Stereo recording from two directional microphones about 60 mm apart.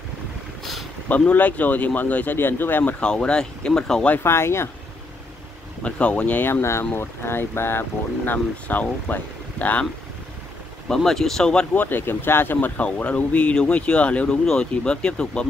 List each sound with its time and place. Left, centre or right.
1.0 s speech: left
3.0 s speech: centre
4.2 s speech: left
5.8 s speech: left
6.4 s speech: left
8.3 s speech: left
11.1 s speech: centre
11.7 s speech: left
14.4 s speech: centre